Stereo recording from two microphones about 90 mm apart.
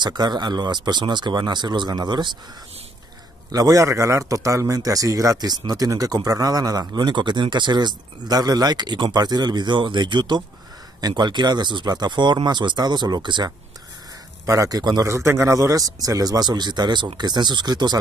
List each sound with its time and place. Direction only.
0.0 s speech: 55° right (ahead or behind)
3.5 s speech: 40° right (ahead or behind); by 13.5 s 55° right (ahead or behind)
14.4 s speech: 35° right (ahead or behind)
15.0 s speech: 30° right (ahead or behind); by 17.9 s 55° right (ahead or behind)